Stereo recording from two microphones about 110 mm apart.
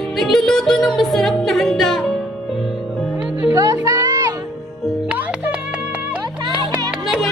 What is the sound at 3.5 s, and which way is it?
Music, 30° right (ahead or behind).